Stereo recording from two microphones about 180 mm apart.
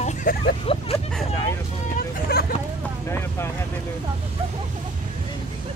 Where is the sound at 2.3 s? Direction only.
60° left (ahead or behind).